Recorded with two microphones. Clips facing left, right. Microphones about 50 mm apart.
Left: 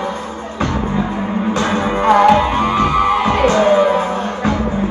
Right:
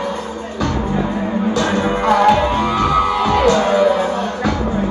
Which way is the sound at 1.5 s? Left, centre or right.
Left.